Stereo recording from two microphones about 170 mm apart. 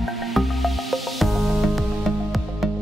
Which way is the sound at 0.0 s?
Centre (ahead or behind).